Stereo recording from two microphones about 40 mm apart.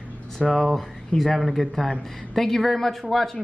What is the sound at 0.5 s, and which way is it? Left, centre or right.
Speech, centre.